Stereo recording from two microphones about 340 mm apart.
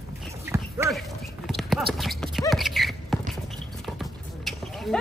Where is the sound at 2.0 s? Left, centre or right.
Centre.